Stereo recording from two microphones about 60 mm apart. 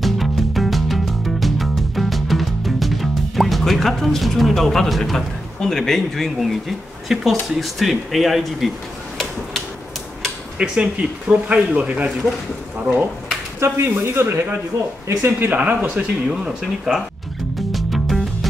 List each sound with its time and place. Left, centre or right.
0.0 s music: centre
7.1 s speech: centre
10.6 s speech: centre
13.6 s speech: right
15.5 s speech: right
15.9 s speech: centre
17.6 s music: centre